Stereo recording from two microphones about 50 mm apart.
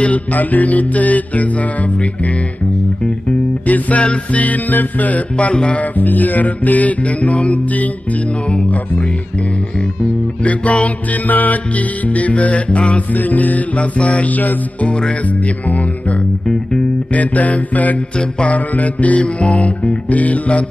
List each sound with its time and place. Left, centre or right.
0.0 s music: left
5.9 s music: left
10.4 s music: left
14.9 s music: centre
15.2 s music: left